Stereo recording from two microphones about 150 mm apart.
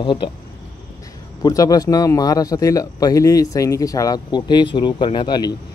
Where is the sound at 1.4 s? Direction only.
25° left (ahead or behind).